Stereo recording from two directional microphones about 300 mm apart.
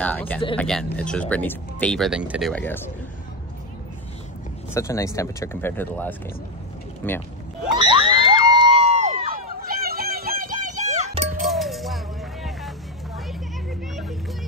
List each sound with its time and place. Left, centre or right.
0.0 s speech: centre
4.7 s speech: centre
7.7 s crowd: centre
11.4 s music: centre